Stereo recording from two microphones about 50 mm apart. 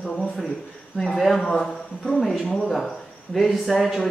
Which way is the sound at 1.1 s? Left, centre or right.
Centre.